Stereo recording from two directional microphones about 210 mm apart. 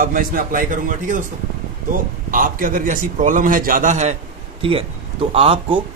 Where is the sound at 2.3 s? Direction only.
40° right (ahead or behind).